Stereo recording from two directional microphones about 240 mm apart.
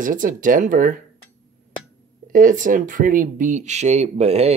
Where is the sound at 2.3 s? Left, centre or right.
Right.